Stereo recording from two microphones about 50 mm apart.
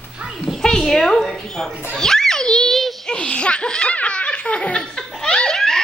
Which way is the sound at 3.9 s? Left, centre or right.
Left.